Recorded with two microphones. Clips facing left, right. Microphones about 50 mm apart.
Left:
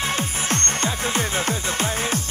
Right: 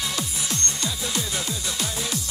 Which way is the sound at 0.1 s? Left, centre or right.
Left.